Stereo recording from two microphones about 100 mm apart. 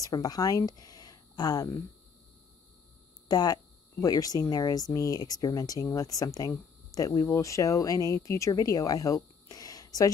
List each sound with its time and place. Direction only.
0.0 s speech: 40° left (ahead or behind)
3.3 s speech: 40° left (ahead or behind)